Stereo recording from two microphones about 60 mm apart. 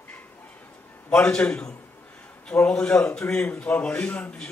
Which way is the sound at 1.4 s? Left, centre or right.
Centre.